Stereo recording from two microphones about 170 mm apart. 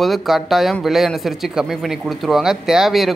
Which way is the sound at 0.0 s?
Centre (ahead or behind).